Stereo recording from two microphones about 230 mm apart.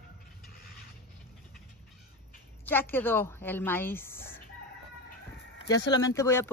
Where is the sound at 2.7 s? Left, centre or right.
Centre.